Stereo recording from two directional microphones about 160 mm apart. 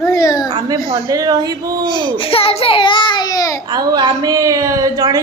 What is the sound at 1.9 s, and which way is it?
A child's voice, 30° left (ahead or behind).